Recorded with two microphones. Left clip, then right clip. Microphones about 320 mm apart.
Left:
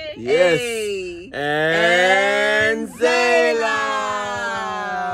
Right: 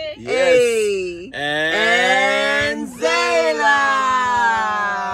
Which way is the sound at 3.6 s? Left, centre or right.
Right.